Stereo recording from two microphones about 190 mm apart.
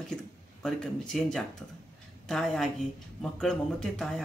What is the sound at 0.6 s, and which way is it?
Speech, 5° left (ahead or behind).